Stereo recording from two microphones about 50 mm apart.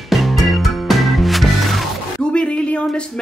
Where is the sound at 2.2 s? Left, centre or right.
Left.